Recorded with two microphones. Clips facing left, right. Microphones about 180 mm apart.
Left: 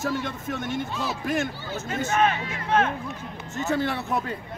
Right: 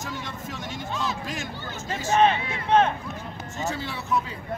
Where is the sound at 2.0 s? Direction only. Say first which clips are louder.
Right 3 dB; 30° right (ahead or behind).